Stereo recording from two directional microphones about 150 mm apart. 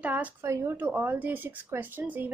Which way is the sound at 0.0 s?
10° right (ahead or behind).